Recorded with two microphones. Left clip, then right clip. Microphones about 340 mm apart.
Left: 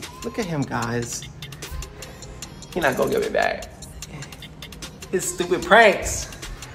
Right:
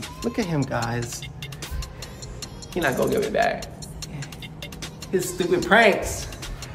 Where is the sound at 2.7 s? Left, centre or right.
Centre.